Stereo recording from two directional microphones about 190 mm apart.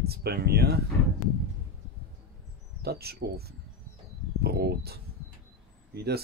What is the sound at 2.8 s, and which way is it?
Speech, 55° right (ahead or behind).